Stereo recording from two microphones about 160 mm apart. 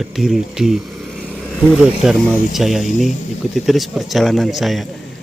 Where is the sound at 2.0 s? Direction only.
Centre (ahead or behind).